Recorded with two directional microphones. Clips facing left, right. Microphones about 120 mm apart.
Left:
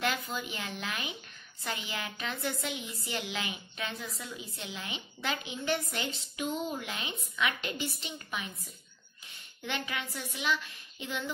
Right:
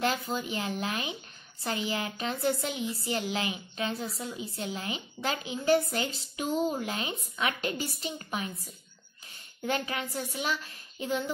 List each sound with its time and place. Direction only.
0.0 s a woman's voice: 35° right (ahead or behind)
9.6 s a woman's voice: 40° right (ahead or behind)